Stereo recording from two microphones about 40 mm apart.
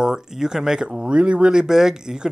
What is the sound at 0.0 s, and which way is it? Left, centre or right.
Speech, centre.